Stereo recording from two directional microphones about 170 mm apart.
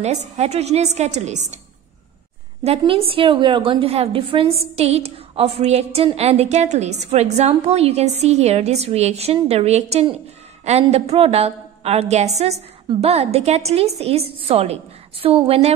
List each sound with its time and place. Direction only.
0.0 s a woman's voice: 40° right (ahead or behind)
2.6 s a woman's voice: 35° right (ahead or behind)